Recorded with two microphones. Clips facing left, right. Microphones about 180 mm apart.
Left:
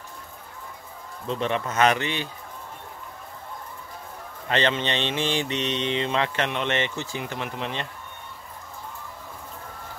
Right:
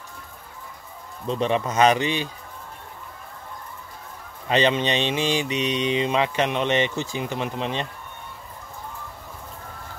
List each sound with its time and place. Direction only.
1.4 s mantra: 20° right (ahead or behind)
4.5 s mantra: 15° right (ahead or behind)